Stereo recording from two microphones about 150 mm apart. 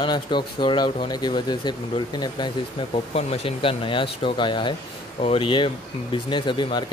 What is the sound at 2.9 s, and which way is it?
Speech, 40° left (ahead or behind).